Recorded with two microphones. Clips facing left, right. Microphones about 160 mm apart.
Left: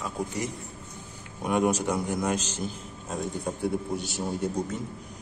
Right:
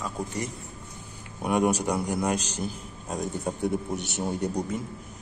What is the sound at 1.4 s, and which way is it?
Speech, 10° right (ahead or behind).